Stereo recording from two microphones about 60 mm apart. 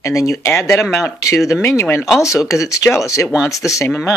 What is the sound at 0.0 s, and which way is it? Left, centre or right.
Speech, left.